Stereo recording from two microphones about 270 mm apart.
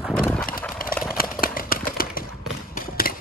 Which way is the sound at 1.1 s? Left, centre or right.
Left.